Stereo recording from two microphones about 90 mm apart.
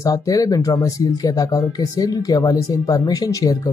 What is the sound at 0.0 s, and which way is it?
Speech, 40° left (ahead or behind).